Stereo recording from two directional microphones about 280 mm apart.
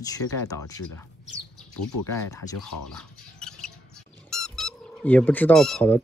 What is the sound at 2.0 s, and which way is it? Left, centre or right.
Speech, centre.